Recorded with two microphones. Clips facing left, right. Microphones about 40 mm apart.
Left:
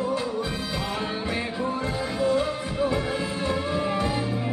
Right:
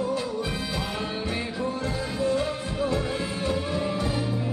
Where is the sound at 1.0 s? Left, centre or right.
Centre.